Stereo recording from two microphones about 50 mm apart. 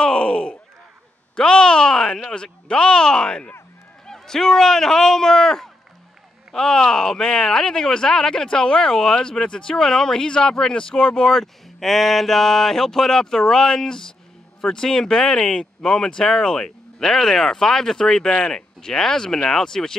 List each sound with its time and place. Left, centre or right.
0.0 s groan: centre
1.3 s a man's voice: centre